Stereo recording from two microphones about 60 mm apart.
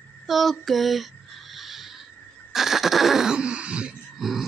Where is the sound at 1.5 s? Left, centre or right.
Centre.